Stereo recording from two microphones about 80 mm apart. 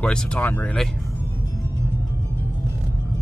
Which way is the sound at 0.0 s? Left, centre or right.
Centre.